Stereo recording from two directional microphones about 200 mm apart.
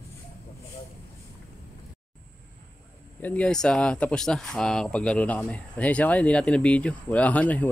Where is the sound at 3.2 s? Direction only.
5° left (ahead or behind).